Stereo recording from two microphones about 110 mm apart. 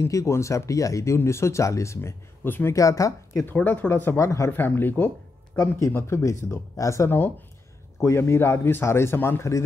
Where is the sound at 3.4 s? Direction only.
15° left (ahead or behind).